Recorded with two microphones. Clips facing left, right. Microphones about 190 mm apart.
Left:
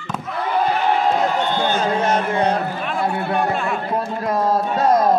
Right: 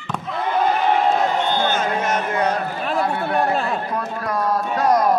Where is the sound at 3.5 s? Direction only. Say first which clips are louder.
Right 1 dB; 35° right (ahead or behind).